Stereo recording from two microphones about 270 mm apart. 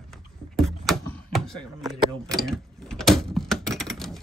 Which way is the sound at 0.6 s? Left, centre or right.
Centre.